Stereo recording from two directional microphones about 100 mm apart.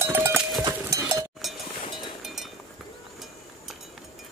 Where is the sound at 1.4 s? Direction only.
Centre (ahead or behind).